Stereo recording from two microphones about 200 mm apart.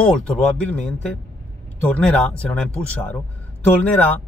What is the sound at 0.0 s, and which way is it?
Speech, 5° left (ahead or behind).